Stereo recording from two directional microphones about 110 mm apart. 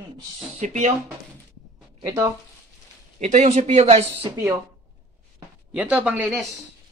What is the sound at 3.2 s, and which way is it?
Speech, 90° right.